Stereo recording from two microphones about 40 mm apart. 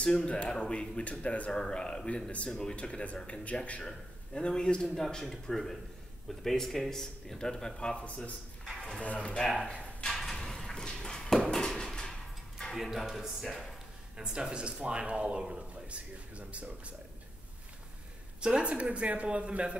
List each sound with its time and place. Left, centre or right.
0.0 s speech: left
1.5 s speech: left
4.3 s speech: centre
4.8 s speech: centre
8.7 s a sound: centre
9.0 s speech: left
10.1 s a sound: centre
12.7 s speech: centre
14.1 s speech: centre
15.9 s speech: right
18.4 s speech: right